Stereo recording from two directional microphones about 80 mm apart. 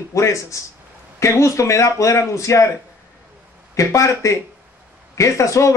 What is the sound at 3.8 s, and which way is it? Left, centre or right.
Speech, left.